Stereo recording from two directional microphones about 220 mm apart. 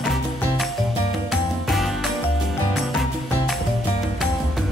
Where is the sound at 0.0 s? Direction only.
Centre (ahead or behind).